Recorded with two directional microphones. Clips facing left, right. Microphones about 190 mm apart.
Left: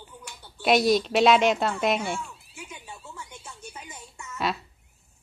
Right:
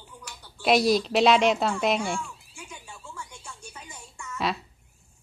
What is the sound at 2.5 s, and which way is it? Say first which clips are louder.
Music: left 2 dB; 25° left (ahead or behind).